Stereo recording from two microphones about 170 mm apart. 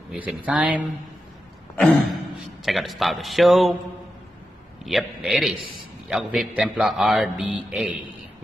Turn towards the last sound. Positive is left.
turn(degrees=-5)  # may be behind; listen again after turning